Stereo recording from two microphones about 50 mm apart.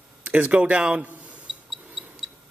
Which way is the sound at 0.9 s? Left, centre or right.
Right.